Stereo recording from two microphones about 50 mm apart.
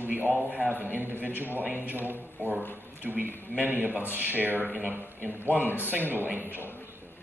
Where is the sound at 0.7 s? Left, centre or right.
Right.